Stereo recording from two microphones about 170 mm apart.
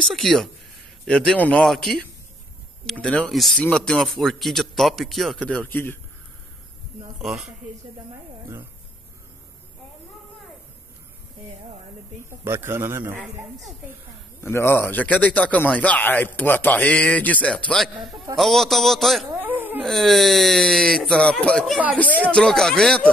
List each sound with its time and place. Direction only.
0.0 s a man's voice: centre (ahead or behind)
7.2 s a man's voice: 5° right (ahead or behind)
12.3 s a man's voice: 15° right (ahead or behind)
13.2 s a man's voice: centre (ahead or behind)
14.4 s a man's voice: 15° left (ahead or behind)
19.3 s dog: 10° right (ahead or behind)
19.8 s a man's voice: centre (ahead or behind)